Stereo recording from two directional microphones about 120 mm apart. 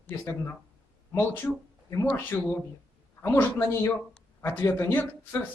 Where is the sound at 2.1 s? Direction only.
15° left (ahead or behind).